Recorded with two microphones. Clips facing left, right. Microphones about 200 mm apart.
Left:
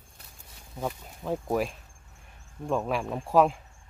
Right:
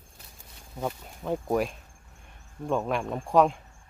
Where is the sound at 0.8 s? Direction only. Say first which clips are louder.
Right 1 dB; centre (ahead or behind).